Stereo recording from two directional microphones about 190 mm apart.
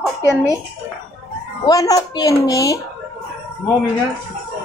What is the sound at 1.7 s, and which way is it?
Speech, 20° left (ahead or behind).